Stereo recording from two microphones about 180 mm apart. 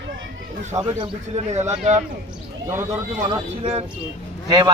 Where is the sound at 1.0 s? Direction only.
40° right (ahead or behind).